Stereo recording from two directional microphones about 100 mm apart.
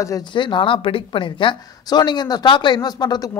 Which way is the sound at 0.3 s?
55° left (ahead or behind).